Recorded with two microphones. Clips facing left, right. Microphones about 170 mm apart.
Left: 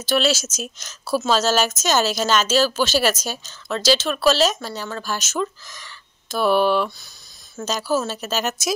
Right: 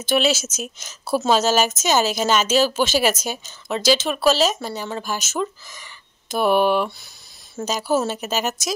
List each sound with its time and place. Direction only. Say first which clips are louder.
0.0 s speech: right 1 dB; 55° right (ahead or behind)
1.1 s speech: right 1 dB; 15° right (ahead or behind)